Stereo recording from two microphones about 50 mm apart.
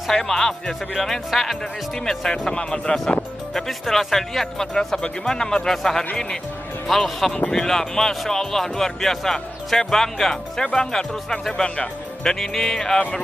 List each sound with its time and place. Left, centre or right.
0.1 s speech: centre
2.0 s speech: centre
3.5 s speech: centre